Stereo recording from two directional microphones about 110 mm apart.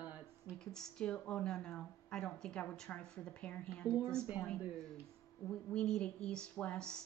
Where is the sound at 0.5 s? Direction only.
5° left (ahead or behind).